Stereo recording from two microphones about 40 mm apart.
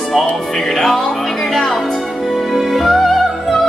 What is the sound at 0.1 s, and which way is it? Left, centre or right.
Speech, centre.